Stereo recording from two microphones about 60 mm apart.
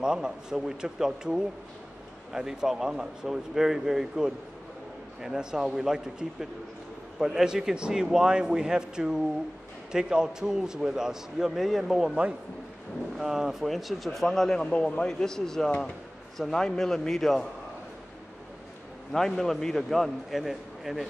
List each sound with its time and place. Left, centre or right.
0.0 s a man's voice: centre
13.2 s a man's voice: centre
19.1 s speech: centre